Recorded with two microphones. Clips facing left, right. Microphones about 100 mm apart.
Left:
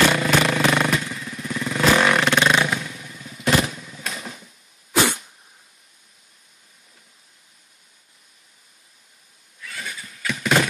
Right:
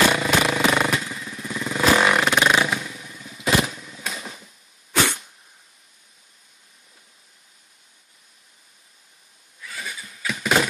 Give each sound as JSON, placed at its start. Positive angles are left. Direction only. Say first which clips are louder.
{"t": 0.1, "sound": "motorcycle", "louder": "left 1 dB", "side_deg": -15}
{"t": 4.9, "sound": "cough", "louder": "left 2 dB", "side_deg": 5}
{"t": 9.6, "sound": "neigh", "louder": "even", "side_deg": -5}